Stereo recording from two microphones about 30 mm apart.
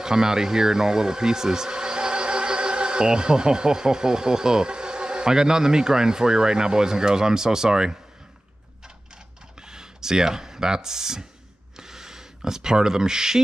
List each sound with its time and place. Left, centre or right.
0.0 s speech: right
9.6 s speech: right
11.7 s snort: centre
12.4 s speech: right